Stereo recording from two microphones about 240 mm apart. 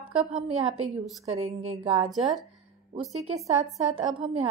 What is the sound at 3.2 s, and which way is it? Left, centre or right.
Speech, right.